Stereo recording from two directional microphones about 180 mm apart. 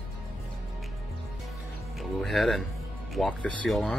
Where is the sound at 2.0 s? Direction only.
Centre (ahead or behind).